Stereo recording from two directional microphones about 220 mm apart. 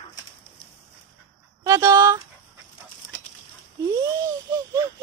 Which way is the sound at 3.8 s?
15° right (ahead or behind).